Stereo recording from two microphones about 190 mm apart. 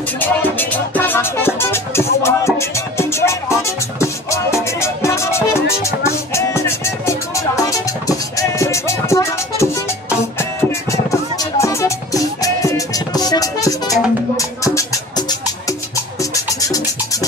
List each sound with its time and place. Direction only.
0.2 s music: 10° left (ahead or behind)
10.7 s music: 15° left (ahead or behind)